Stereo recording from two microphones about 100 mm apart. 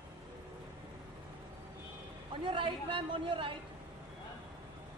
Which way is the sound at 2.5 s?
60° right (ahead or behind).